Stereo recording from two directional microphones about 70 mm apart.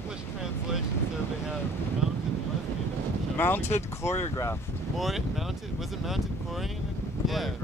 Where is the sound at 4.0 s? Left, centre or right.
Left.